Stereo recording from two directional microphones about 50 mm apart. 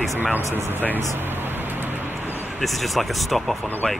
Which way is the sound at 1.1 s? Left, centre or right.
Right.